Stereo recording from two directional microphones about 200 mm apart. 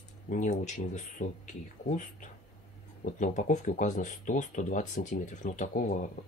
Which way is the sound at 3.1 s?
40° left (ahead or behind).